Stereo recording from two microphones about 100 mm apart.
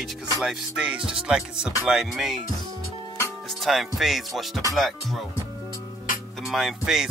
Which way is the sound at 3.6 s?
Centre (ahead or behind).